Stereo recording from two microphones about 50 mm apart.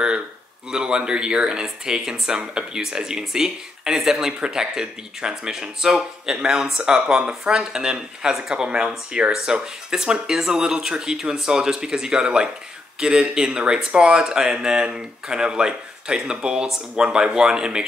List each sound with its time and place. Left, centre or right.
0.7 s speech: centre